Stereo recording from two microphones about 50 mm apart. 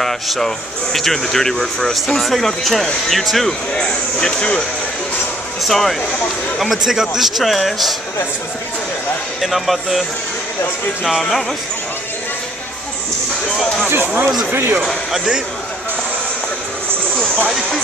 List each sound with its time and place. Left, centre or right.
0.0 s a sound: centre
0.9 s speech: centre
3.8 s speech: centre
5.6 s speech: centre
9.4 s speech: centre
11.1 s speech: centre
13.8 s speech: right
14.5 s speech: right
15.1 s a man's voice: centre
17.5 s speech: centre